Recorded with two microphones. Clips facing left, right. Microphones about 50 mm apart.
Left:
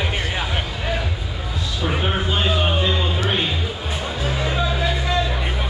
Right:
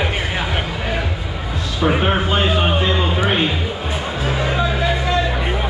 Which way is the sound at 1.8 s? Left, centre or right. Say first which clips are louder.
Right 6 dB; right.